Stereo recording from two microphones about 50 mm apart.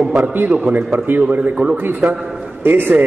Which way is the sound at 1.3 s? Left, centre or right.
Right.